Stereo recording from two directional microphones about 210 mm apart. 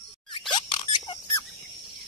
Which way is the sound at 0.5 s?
20° left (ahead or behind).